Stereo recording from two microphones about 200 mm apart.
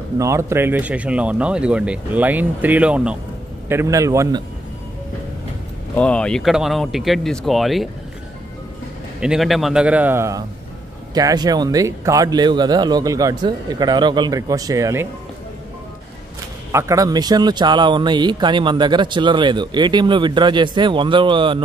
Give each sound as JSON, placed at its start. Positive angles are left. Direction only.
{"t": 0.2, "sound": "speech", "side_deg": -15}
{"t": 5.9, "sound": "speech", "side_deg": 5}
{"t": 9.2, "sound": "speech", "side_deg": 0}
{"t": 16.7, "sound": "speech", "side_deg": -15}